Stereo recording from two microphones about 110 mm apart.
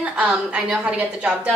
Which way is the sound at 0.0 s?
10° right (ahead or behind).